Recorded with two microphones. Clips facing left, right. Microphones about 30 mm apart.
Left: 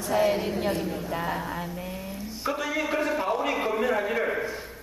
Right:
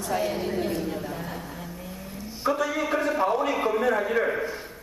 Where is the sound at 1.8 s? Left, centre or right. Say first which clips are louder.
Left 4 dB; left.